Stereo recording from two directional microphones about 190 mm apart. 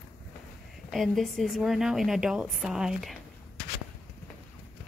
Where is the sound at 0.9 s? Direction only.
Centre (ahead or behind).